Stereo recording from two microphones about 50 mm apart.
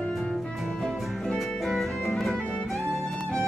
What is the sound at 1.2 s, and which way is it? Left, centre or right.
Music, centre.